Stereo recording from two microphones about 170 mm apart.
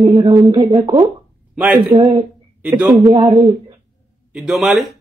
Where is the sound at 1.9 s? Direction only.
30° right (ahead or behind).